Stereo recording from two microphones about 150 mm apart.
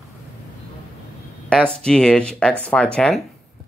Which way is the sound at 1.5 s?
5° left (ahead or behind).